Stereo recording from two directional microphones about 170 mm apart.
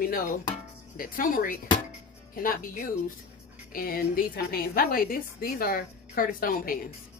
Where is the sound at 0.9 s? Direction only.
55° left (ahead or behind).